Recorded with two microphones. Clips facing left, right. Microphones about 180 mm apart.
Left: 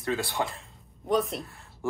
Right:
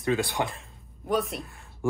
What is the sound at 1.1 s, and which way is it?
Speech, centre (ahead or behind).